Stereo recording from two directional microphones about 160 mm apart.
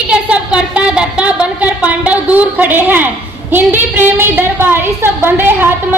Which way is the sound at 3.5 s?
10° right (ahead or behind).